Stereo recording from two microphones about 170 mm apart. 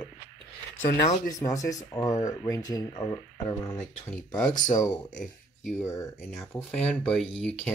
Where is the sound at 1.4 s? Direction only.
20° left (ahead or behind).